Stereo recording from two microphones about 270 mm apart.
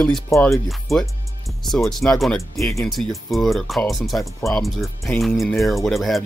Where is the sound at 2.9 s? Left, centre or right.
Centre.